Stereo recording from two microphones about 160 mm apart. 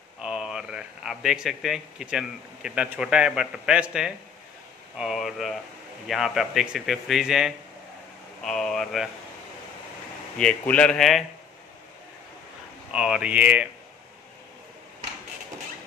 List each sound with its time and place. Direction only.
0.2 s a man's voice: 5° right (ahead or behind)
10.3 s a man's voice: 10° left (ahead or behind)
12.9 s speech: 5° right (ahead or behind)